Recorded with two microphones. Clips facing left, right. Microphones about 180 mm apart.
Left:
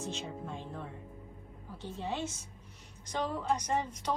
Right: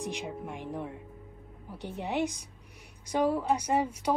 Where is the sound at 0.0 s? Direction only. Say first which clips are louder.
Right 3 dB; 15° right (ahead or behind).